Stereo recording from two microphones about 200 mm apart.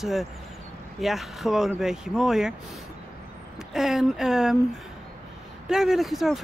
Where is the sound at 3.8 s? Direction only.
Centre (ahead or behind).